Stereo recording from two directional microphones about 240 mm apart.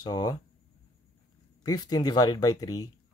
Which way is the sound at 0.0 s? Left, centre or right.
Centre.